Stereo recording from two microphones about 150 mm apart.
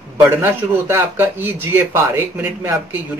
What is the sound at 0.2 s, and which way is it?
Speech, 15° right (ahead or behind).